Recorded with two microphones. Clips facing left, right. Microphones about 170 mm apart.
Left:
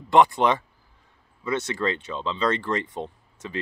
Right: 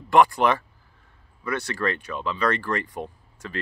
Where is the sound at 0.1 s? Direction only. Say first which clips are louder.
Even; 20° left (ahead or behind).